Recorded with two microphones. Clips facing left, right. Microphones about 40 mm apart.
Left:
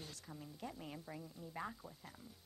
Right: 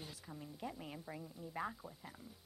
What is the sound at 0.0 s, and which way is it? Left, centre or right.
Speech, centre.